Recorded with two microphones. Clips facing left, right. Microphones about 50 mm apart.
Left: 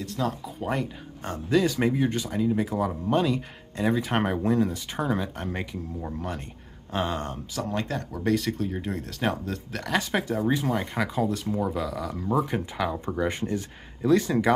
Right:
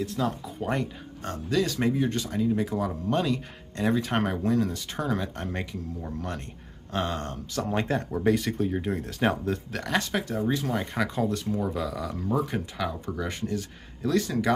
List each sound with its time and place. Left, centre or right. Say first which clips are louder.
0.0 s speech: right 1 dB; centre
1.2 s speech: left 3 dB; centre
7.7 s speech: right 5 dB; right
8.3 s speech: right 1 dB; centre
10.1 s speech: left 2 dB; centre
13.0 s speech: left 4 dB; left